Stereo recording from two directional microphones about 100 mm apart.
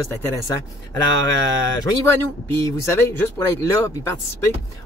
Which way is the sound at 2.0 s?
25° left (ahead or behind).